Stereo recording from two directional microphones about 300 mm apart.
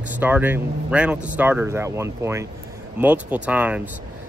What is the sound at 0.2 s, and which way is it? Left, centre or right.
Speech, centre.